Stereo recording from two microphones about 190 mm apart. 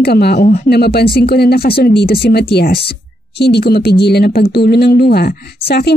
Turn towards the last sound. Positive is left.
turn(degrees=55)  # may be behind; listen again after turning